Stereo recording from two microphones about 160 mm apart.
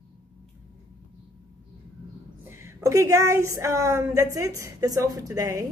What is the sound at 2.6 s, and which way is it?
Speech, 20° right (ahead or behind).